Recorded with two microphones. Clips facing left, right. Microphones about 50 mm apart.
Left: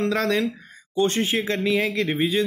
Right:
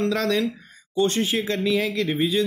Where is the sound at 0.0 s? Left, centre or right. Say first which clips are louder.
Even; left.